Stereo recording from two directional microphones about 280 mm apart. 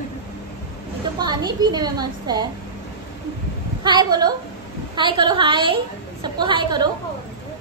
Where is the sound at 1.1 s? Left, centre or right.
Centre.